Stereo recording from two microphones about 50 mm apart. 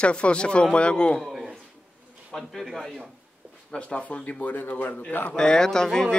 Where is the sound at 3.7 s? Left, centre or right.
Left.